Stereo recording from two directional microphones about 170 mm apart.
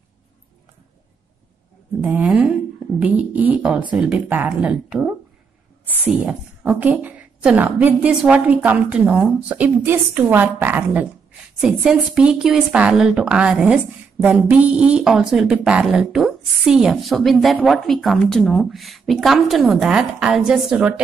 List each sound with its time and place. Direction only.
2.0 s a woman's voice: 5° right (ahead or behind)